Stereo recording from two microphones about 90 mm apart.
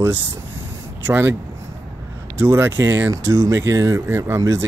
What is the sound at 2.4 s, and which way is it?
Speech, 30° right (ahead or behind).